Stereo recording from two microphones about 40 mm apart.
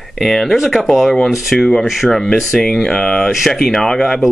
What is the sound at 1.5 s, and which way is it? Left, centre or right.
Speech, centre.